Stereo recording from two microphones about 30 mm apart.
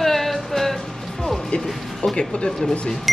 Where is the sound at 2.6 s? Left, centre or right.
Centre.